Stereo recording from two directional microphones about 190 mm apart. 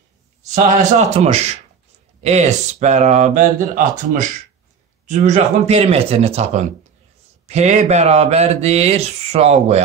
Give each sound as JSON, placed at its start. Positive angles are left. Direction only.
{"t": 0.6, "sound": "speech", "side_deg": -40}